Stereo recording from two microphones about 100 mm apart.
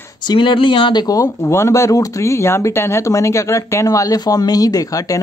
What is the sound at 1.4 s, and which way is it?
Speech, 30° left (ahead or behind).